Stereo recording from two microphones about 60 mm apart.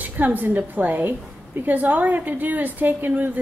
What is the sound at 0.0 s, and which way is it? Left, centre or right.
A woman's voice, right.